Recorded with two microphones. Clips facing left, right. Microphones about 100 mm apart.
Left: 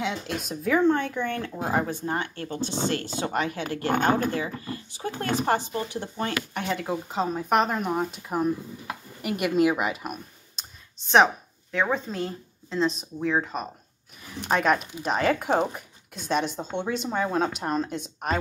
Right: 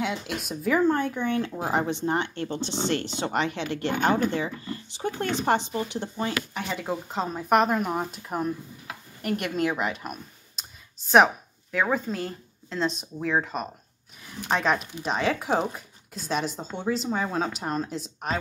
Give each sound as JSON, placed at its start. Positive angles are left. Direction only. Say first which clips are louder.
{"t": 0.0, "sound": "speech", "louder": "even", "side_deg": -5}
{"t": 3.6, "sound": "speech", "louder": "left 3 dB", "side_deg": 45}
{"t": 4.4, "sound": "speech", "louder": "even", "side_deg": -25}
{"t": 6.5, "sound": "a woman's voice", "louder": "left 2 dB", "side_deg": 0}
{"t": 10.5, "sound": "clicking", "louder": "even", "side_deg": -5}
{"t": 11.7, "sound": "speech", "louder": "right 1 dB", "side_deg": -5}